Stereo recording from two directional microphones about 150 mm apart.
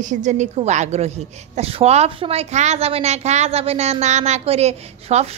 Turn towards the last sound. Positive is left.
turn(degrees=-45)  # may be behind; listen again after turning